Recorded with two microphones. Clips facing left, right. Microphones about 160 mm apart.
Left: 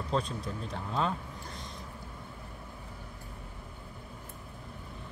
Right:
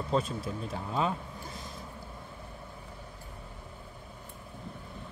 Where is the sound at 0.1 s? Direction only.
5° right (ahead or behind).